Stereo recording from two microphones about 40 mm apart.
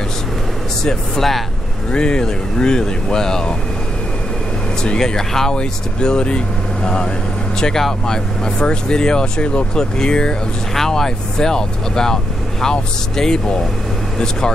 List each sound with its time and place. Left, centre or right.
0.8 s speech: centre
1.9 s speech: left
4.9 s speech: centre
8.1 s speech: left
10.7 s speech: centre